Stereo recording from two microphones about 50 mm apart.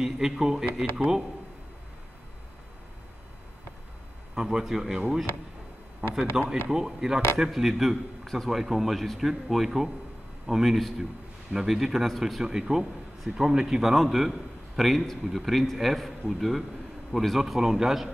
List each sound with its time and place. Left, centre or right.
0.0 s speech: centre
4.4 s speech: centre
6.0 s a man's voice: centre
13.9 s a man's voice: centre